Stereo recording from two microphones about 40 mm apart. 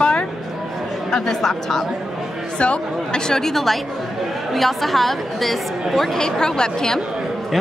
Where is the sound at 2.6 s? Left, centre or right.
Left.